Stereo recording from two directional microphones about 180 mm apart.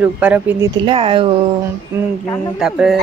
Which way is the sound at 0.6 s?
30° right (ahead or behind).